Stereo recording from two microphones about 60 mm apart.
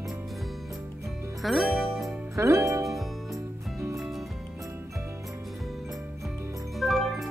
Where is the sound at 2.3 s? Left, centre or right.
Right.